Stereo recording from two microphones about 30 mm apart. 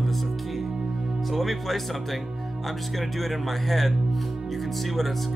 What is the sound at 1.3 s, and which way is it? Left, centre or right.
Speech, centre.